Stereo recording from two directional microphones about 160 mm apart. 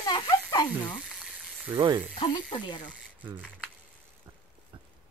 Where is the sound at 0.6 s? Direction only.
10° left (ahead or behind).